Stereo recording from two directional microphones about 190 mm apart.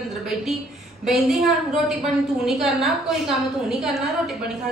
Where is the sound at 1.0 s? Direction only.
Centre (ahead or behind).